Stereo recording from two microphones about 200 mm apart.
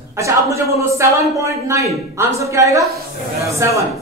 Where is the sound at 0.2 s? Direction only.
15° right (ahead or behind).